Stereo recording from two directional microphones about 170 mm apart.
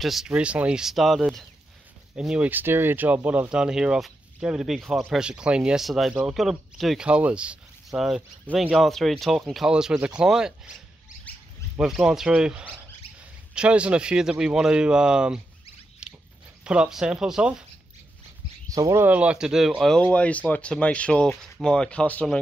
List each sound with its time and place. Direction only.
0.0 s speech: centre (ahead or behind)
11.7 s speech: 5° right (ahead or behind)
16.0 s biting: 5° right (ahead or behind)
16.6 s speech: 5° right (ahead or behind)
18.7 s speech: 20° right (ahead or behind)
19.0 s speech: 10° right (ahead or behind)